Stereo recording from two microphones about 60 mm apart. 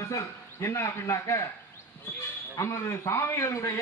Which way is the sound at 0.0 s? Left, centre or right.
Left.